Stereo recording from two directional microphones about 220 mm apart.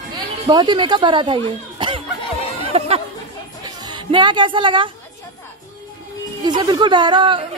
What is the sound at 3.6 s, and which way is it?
Chatter, 20° right (ahead or behind).